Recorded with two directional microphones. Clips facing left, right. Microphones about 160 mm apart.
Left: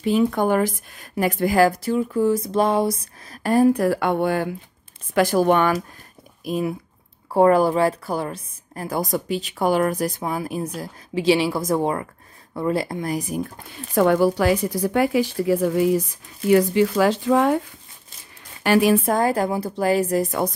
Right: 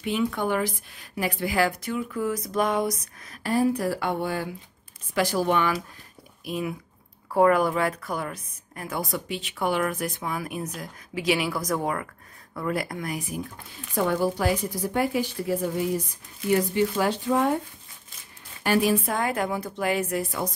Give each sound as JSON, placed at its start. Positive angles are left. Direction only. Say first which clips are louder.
{"t": 0.0, "sound": "a woman's voice", "louder": "left 7 dB", "side_deg": 40}
{"t": 3.4, "sound": "speech", "louder": "left 7 dB", "side_deg": 50}
{"t": 6.4, "sound": "a woman's voice", "louder": "left 6 dB", "side_deg": 40}
{"t": 13.7, "sound": "speech", "louder": "left 8 dB", "side_deg": 75}
{"t": 18.6, "sound": "a woman's voice", "louder": "left 5 dB", "side_deg": 80}
{"t": 18.9, "sound": "a woman's voice", "louder": "left 6 dB", "side_deg": 40}